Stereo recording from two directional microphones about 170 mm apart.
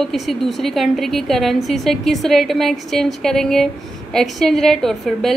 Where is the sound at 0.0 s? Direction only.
Centre (ahead or behind).